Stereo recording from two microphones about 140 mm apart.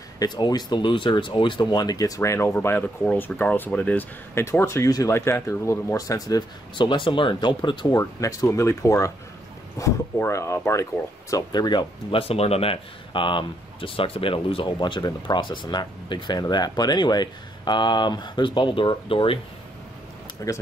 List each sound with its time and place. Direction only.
0.2 s speech: 30° left (ahead or behind)
20.5 s speech: 25° left (ahead or behind)